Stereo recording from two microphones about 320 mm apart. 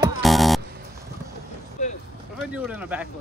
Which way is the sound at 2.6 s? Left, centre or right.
Centre.